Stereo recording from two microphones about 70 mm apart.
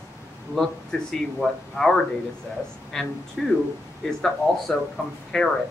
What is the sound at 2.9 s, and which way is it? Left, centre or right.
Speech, centre.